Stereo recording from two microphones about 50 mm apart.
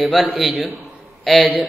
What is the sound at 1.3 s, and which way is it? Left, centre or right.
Speech, centre.